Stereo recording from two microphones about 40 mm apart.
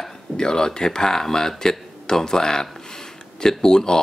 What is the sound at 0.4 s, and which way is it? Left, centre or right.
Speech, centre.